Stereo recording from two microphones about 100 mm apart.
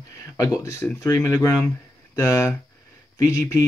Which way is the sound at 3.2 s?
35° left (ahead or behind).